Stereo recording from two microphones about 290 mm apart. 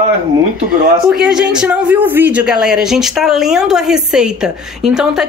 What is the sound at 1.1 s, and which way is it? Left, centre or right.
Speech, centre.